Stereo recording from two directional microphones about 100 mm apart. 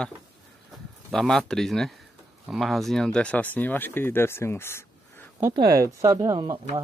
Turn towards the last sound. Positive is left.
turn(degrees=-30)  # may be behind; listen again after turning